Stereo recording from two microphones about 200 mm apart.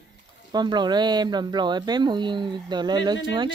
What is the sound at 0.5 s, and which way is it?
Speech, 20° right (ahead or behind).